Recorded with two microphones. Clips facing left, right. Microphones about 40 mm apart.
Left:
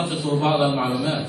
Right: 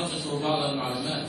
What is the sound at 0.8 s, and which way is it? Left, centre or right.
Speech, centre.